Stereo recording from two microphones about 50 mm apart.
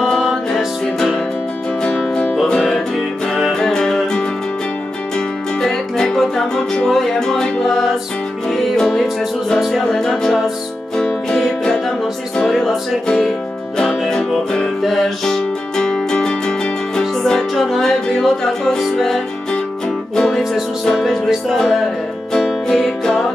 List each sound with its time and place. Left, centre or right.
1.8 s music: left
3.5 s music: centre
5.6 s music: centre
7.6 s music: centre
12.4 s music: centre
14.8 s music: centre
15.2 s music: centre